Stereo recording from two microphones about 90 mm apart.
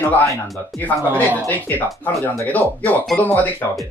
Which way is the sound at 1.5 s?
20° left (ahead or behind).